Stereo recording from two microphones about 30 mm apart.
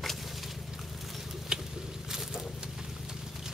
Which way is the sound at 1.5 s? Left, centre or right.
Right.